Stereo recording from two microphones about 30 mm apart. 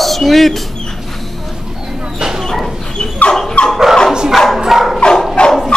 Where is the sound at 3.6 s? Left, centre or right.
Left.